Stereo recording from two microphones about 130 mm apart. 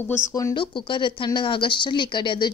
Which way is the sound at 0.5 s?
40° left (ahead or behind).